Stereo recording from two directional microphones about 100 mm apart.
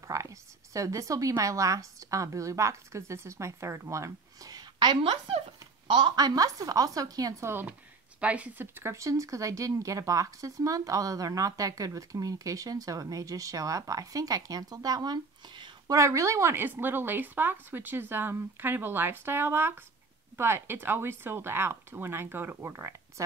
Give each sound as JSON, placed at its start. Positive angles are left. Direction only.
{"t": 0.1, "sound": "a sound", "side_deg": -30}
{"t": 1.4, "sound": "speech", "side_deg": -35}
{"t": 7.4, "sound": "a woman's voice", "side_deg": -20}
{"t": 15.9, "sound": "a woman's voice", "side_deg": -30}